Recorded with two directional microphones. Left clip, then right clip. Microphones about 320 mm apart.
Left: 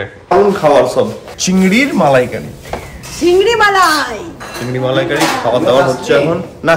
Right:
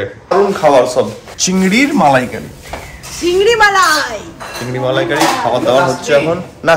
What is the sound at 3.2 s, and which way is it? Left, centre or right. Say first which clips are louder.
Speech: even; centre.